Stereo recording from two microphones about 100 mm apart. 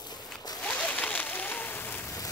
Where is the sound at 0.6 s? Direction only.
15° left (ahead or behind).